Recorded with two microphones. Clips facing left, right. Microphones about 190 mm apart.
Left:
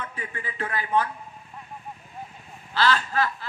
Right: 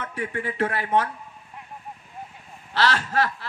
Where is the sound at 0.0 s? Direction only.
80° right.